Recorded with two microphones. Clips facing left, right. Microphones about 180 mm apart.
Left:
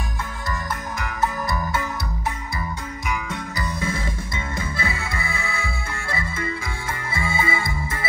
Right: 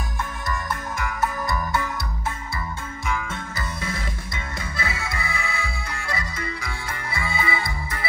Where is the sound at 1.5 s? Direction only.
20° left (ahead or behind).